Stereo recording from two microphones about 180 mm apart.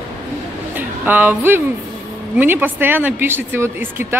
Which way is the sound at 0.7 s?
10° right (ahead or behind).